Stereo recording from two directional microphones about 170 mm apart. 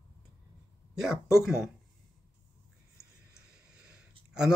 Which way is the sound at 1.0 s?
Centre (ahead or behind).